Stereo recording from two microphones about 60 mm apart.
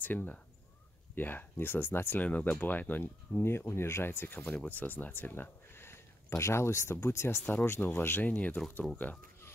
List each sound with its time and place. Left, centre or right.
0.0 s speech: left
2.2 s speech: left
4.4 s speech: centre
4.6 s speech: left
8.3 s speech: left